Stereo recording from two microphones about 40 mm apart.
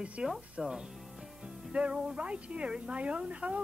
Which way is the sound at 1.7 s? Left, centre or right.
Right.